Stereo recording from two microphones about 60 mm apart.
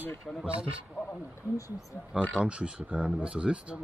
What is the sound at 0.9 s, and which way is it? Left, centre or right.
Speech, centre.